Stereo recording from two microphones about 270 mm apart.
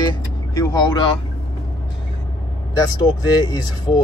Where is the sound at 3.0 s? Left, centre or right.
Centre.